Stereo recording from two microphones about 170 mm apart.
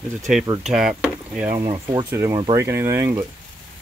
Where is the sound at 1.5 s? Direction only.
25° right (ahead or behind).